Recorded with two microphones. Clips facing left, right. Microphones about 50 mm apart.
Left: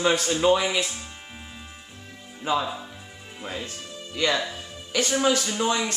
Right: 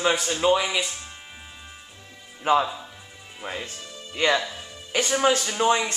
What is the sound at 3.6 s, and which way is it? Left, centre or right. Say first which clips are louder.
Music: left 1 dB; right.